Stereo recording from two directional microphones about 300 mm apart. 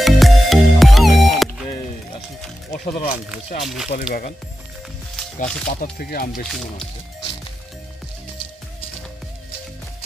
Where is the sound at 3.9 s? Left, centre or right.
Left.